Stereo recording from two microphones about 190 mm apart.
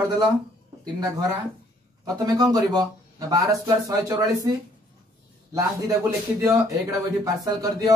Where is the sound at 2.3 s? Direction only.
20° right (ahead or behind).